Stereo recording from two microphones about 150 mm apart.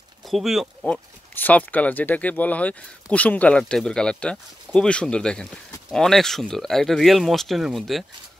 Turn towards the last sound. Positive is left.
turn(degrees=0)  # may be behind; listen again after turning